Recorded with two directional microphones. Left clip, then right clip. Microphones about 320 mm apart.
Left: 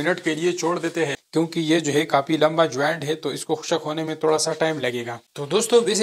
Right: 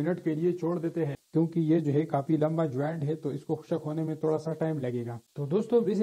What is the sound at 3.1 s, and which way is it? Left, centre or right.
A man's voice, centre.